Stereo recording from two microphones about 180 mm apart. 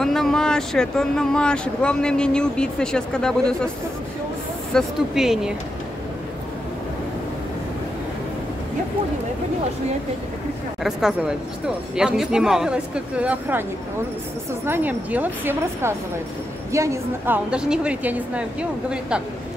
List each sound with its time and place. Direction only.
0.0 s speech: centre (ahead or behind)
4.7 s speech: centre (ahead or behind)
10.8 s speech: 5° right (ahead or behind)
14.7 s speech: 10° right (ahead or behind)
17.5 s speech: 5° right (ahead or behind)